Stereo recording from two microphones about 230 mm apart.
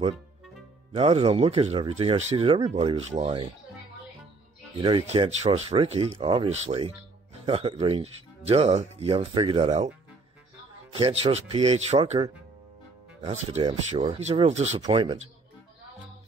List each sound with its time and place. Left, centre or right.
0.9 s speech: right
4.7 s speech: right
10.9 s speech: right